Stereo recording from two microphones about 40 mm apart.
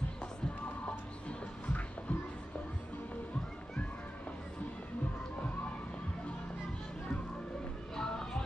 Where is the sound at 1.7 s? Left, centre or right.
Left.